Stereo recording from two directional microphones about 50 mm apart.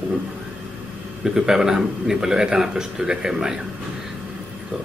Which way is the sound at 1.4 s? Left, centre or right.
Centre.